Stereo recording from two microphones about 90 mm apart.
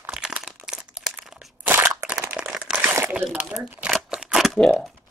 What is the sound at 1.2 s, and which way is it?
Crunch, 5° right (ahead or behind).